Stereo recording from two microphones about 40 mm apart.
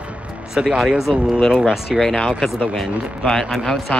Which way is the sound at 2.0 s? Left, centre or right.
Centre.